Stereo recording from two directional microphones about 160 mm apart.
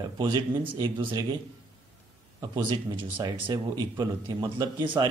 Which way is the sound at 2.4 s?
25° right (ahead or behind).